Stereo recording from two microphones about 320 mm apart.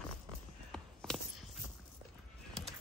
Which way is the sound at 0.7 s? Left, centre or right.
Centre.